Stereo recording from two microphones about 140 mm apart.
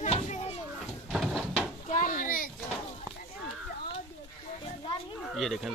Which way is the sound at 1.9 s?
70° left (ahead or behind).